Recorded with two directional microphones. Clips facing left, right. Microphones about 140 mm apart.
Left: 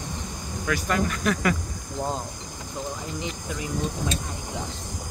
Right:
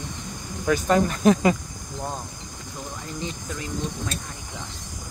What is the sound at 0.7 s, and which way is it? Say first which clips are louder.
Speech: right 5 dB; 30° right (ahead or behind).